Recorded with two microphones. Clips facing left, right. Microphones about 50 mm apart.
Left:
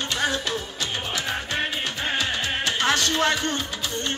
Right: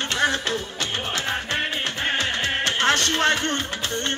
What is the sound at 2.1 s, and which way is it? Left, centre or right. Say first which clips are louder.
Music: right 1 dB; right.